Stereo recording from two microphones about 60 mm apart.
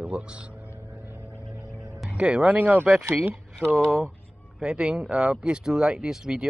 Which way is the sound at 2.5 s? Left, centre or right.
Right.